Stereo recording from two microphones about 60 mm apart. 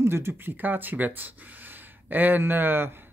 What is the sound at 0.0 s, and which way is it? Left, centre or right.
Speech, right.